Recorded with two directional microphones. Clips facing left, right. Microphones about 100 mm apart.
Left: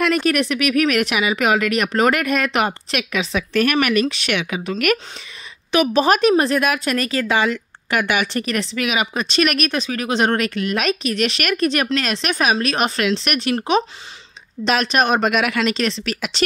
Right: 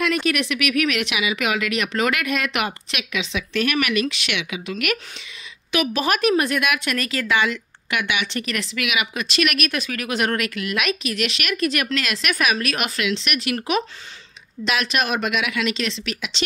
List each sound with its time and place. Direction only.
0.0 s a woman's voice: 45° left (ahead or behind)